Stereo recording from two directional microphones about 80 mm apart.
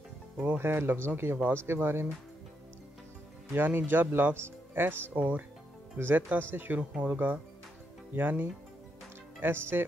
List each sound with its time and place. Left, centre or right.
0.4 s speech: right
3.5 s speech: right